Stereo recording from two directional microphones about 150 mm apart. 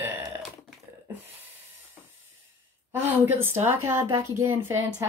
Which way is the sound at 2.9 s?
15° right (ahead or behind).